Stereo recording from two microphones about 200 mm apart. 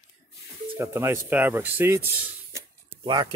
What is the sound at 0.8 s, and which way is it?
Speech, 10° right (ahead or behind).